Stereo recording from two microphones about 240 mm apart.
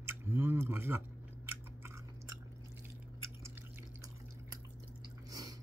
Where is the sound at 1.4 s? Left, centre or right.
Centre.